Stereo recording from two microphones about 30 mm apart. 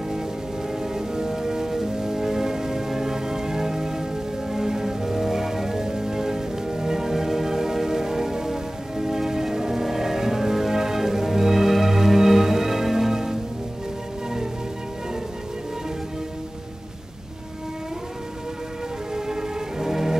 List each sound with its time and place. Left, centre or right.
0.7 s music: centre
19.1 s music: centre